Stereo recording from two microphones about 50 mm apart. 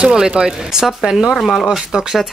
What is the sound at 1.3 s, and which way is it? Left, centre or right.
Speech, centre.